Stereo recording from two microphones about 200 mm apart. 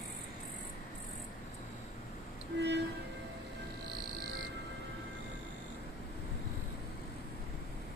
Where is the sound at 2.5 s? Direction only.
60° right (ahead or behind).